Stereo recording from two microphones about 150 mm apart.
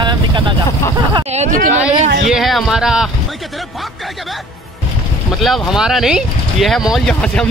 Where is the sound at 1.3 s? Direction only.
55° right (ahead or behind).